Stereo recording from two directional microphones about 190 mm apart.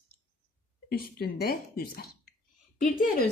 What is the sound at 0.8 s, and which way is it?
Speech, 50° left (ahead or behind).